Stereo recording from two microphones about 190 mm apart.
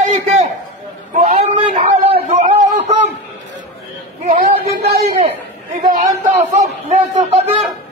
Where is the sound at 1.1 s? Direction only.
30° right (ahead or behind).